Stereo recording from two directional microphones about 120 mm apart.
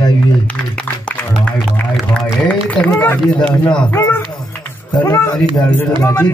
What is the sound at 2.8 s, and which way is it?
Speech, 10° left (ahead or behind).